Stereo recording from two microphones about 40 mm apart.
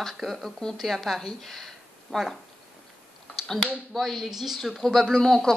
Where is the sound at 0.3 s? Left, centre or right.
Centre.